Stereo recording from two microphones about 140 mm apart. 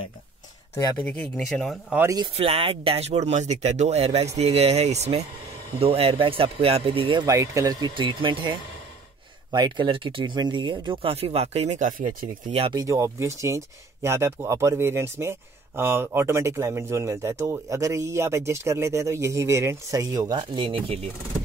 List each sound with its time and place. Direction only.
0.9 s speech: 10° left (ahead or behind)
2.3 s speech: 45° right (ahead or behind)
7.2 s speech: 20° right (ahead or behind)
7.9 s speech: 35° right (ahead or behind); by 12.3 s 70° right (ahead or behind)
12.7 s speech: 20° right (ahead or behind); by 21.0 s 40° right (ahead or behind)